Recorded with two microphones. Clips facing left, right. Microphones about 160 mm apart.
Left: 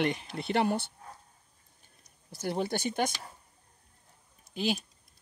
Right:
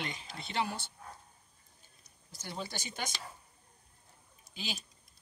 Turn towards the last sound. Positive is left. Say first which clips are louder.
# left 12 dB
turn(degrees=55)  # may be behind; listen again after turning